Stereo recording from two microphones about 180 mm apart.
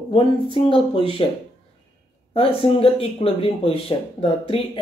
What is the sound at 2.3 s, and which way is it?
Speech, 30° left (ahead or behind).